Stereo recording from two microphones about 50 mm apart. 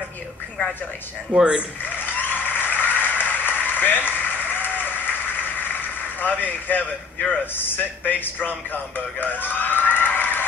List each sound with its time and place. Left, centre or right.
1.3 s speech: centre
1.9 s applause: left
7.6 s speech: left